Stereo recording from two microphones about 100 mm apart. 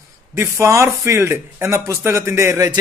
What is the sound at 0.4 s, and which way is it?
Speech, 25° right (ahead or behind).